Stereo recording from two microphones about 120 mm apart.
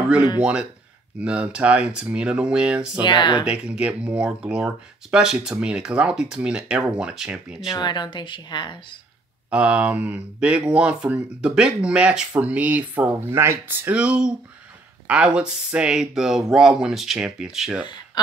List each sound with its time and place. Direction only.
0.4 s speech: 10° right (ahead or behind)
3.0 s speech: 40° left (ahead or behind)
3.4 s speech: 10° right (ahead or behind)
7.7 s speech: 40° left (ahead or behind)
9.5 s speech: 10° right (ahead or behind)
13.9 s speech: 10° right (ahead or behind)
18.2 s a sound: 35° left (ahead or behind)